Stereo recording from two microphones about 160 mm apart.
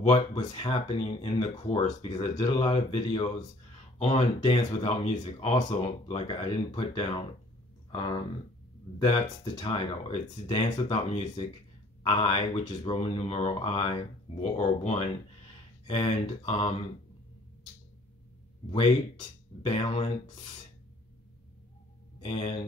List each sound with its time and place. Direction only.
0.0 s speech: 30° left (ahead or behind)
18.7 s speech: 35° left (ahead or behind)